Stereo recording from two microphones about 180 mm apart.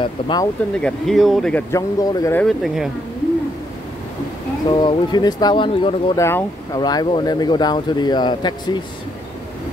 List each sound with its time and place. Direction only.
0.0 s speech: 25° left (ahead or behind)
0.7 s speech: 5° left (ahead or behind)
1.7 s speech: 20° left (ahead or behind)
2.4 s speech: centre (ahead or behind)
4.6 s speech: 25° left (ahead or behind)
6.1 s speech: 15° left (ahead or behind)